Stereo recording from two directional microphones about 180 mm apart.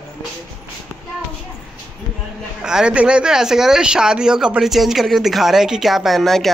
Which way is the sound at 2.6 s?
5° right (ahead or behind).